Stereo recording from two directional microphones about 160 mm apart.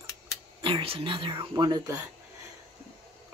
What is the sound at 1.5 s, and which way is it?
Speech, 25° right (ahead or behind).